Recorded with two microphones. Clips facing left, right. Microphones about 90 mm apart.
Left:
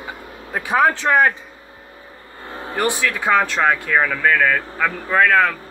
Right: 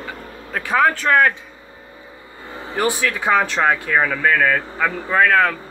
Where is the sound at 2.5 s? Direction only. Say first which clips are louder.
Even; centre (ahead or behind).